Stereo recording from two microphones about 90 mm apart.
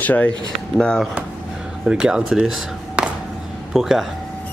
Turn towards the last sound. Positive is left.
turn(degrees=-5)  # may be behind; listen again after turning